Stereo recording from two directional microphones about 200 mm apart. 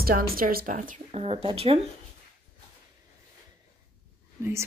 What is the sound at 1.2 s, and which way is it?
Speech, 30° right (ahead or behind).